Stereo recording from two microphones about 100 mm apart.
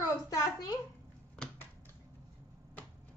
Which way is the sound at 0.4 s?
35° left (ahead or behind).